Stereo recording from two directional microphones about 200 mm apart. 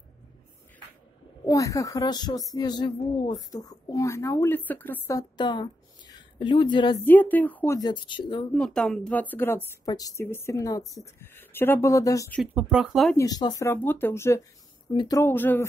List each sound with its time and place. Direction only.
1.4 s speech: 15° left (ahead or behind)
7.1 s speech: 10° left (ahead or behind)
8.5 s speech: 5° left (ahead or behind)
12.4 s speech: 5° right (ahead or behind)
13.1 s speech: 15° left (ahead or behind)